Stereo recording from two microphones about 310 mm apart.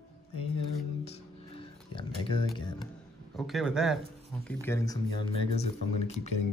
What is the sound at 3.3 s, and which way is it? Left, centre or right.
A man's voice, centre.